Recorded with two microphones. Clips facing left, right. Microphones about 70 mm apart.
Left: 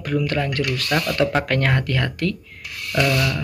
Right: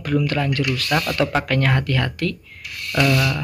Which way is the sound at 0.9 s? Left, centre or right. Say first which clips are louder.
Even; centre.